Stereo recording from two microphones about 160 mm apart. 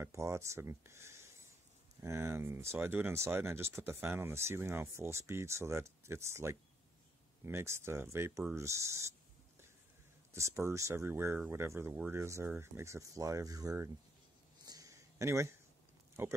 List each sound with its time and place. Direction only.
0.0 s speech: 20° right (ahead or behind)
10.3 s speech: 15° right (ahead or behind)
14.7 s a sound: 20° right (ahead or behind)
16.2 s speech: 15° right (ahead or behind)